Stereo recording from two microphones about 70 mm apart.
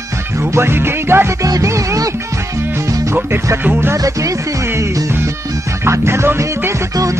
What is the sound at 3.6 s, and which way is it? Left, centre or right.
Music, right.